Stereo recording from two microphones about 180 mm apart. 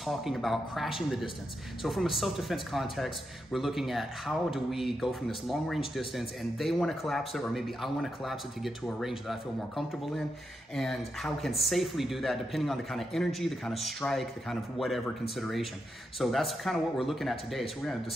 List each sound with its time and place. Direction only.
0.0 s speech: centre (ahead or behind)